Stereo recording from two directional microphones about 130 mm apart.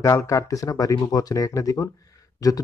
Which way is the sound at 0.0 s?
20° left (ahead or behind).